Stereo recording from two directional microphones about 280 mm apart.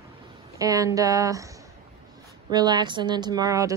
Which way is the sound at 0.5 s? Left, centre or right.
Centre.